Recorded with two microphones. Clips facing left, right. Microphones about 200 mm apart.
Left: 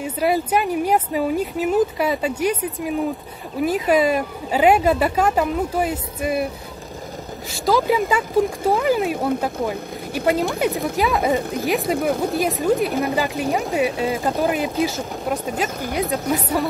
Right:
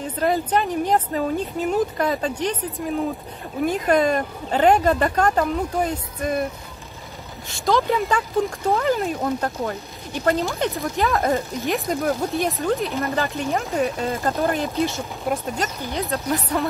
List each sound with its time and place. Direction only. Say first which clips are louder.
0.0 s speech: left 2 dB; 10° left (ahead or behind)
7.5 s speech: left 2 dB; 5° left (ahead or behind)
11.0 s speech: left 1 dB; centre (ahead or behind)